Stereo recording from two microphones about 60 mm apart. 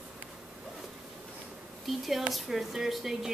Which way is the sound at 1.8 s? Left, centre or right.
Centre.